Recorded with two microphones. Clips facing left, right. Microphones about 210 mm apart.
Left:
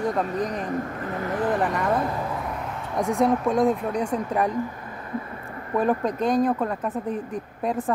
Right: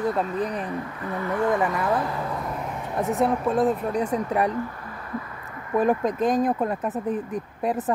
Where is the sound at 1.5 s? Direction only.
5° right (ahead or behind).